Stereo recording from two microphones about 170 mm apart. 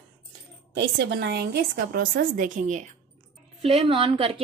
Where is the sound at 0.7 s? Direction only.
90° right; by 2.9 s 50° right (ahead or behind).